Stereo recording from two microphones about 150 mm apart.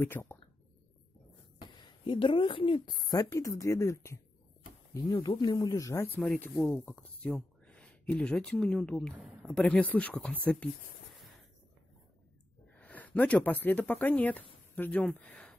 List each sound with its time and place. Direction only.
0.0 s speech: 15° left (ahead or behind)
1.8 s speech: 30° left (ahead or behind)
5.1 s speech: 35° left (ahead or behind); by 10.7 s 10° left (ahead or behind)
12.7 s speech: 10° left (ahead or behind)